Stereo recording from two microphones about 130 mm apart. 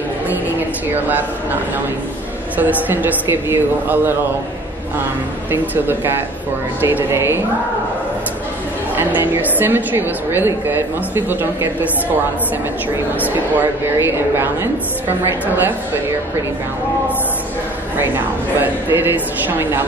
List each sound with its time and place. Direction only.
0.3 s a woman's voice: 15° right (ahead or behind)
2.5 s a woman's voice: 15° right (ahead or behind)
5.5 s a woman's voice: 15° right (ahead or behind)
8.9 s a woman's voice: 15° right (ahead or behind)
12.9 s a woman's voice: 15° right (ahead or behind)
18.6 s a woman's voice: 15° right (ahead or behind)